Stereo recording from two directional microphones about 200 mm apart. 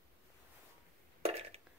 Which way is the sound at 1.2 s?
30° right (ahead or behind).